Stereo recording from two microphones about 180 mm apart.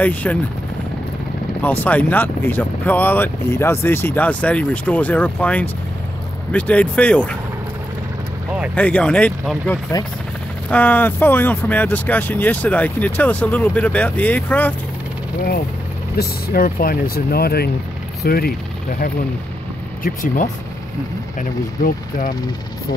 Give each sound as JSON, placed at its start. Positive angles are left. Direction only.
{"t": 0.0, "sound": "speech", "side_deg": 10}
{"t": 1.6, "sound": "speech", "side_deg": 10}
{"t": 8.7, "sound": "speech", "side_deg": 5}
{"t": 16.2, "sound": "speech", "side_deg": 55}
{"t": 20.0, "sound": "speech", "side_deg": 50}